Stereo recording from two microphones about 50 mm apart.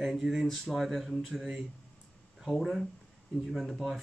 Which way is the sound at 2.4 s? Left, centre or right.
Centre.